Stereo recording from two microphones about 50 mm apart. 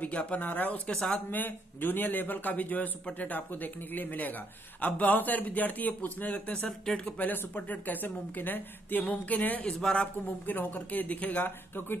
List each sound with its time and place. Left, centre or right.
0.0 s speech: left
9.7 s a man's voice: centre
10.4 s speech: left